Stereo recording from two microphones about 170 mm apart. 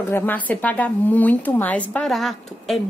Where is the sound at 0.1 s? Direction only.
10° left (ahead or behind).